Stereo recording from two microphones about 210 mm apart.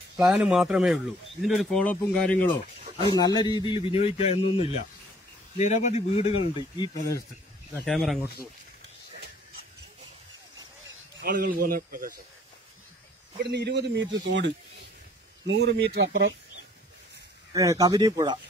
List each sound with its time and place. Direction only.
0.2 s speech: centre (ahead or behind)
2.8 s a sound: 25° right (ahead or behind)
3.2 s speech: 20° left (ahead or behind)
7.8 s speech: centre (ahead or behind)
11.2 s speech: 45° right (ahead or behind)
13.4 s a man's voice: 55° right (ahead or behind)
17.5 s speech: 15° right (ahead or behind)